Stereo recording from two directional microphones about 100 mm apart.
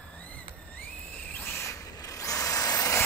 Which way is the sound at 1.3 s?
25° left (ahead or behind).